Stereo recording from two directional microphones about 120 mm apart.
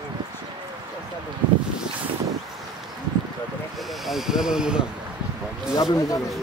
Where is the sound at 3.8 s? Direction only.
Centre (ahead or behind).